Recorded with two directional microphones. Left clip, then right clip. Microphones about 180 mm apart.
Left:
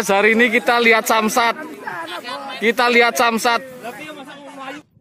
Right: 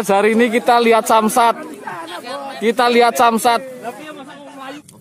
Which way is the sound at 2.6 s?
15° right (ahead or behind).